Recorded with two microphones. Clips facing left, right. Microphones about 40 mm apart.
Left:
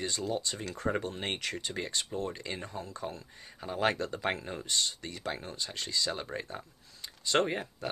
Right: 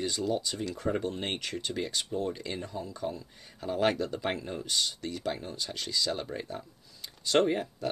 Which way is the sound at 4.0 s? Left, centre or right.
Left.